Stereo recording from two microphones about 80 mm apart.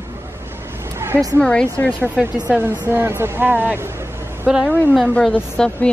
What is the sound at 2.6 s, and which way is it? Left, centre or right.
Speech, right.